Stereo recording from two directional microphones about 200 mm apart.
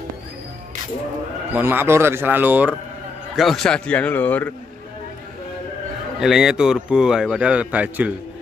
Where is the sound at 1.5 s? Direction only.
10° right (ahead or behind); by 4.5 s 10° left (ahead or behind).